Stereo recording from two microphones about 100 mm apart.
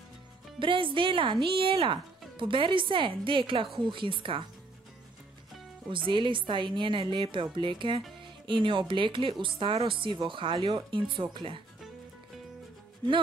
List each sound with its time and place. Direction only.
0.6 s speech: 55° right (ahead or behind)
5.9 s speech: 55° right (ahead or behind)